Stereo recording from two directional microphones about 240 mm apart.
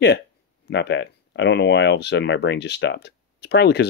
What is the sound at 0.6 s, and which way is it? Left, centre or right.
Speech, left.